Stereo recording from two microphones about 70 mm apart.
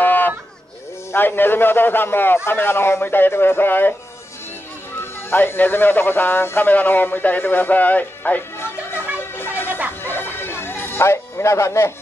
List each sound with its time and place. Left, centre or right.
0.0 s a sound: left
1.1 s a man's voice: left
4.9 s speech: left
8.5 s music: left
9.7 s music: right
10.0 s music: left